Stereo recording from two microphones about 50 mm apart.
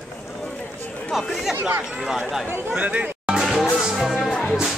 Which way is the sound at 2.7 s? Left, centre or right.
Right.